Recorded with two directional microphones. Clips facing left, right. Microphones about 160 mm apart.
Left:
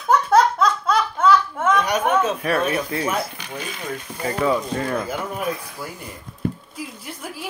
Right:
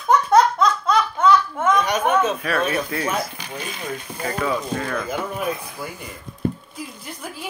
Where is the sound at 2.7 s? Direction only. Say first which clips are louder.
Even; 25° left (ahead or behind).